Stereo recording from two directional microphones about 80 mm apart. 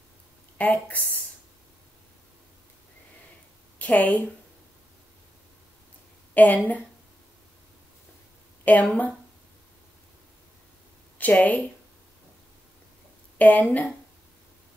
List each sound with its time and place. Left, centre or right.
0.6 s speech: centre
3.7 s a woman's voice: centre
6.3 s a woman's voice: centre
8.6 s speech: centre
11.1 s a woman's voice: centre
13.4 s speech: centre